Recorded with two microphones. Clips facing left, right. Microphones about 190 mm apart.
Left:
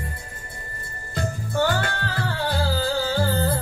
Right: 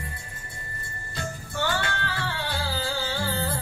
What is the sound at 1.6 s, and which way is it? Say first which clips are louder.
Music: left 5 dB; 40° left (ahead or behind).